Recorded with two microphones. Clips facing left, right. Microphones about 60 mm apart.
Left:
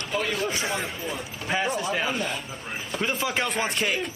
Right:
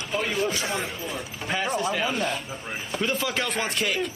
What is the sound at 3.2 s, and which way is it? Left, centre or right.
Speech, left.